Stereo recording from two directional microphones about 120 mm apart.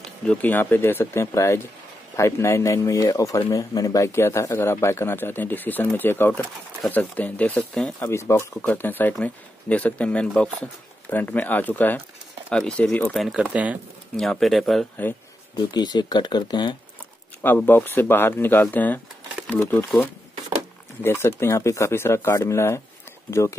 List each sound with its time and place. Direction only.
0.2 s speech: 10° left (ahead or behind)
8.1 s speech: 20° left (ahead or behind); by 13.4 s centre (ahead or behind)
13.4 s speech: 10° right (ahead or behind)
14.1 s speech: 5° left (ahead or behind)
15.5 s speech: 35° left (ahead or behind)
17.4 s speech: 15° left (ahead or behind)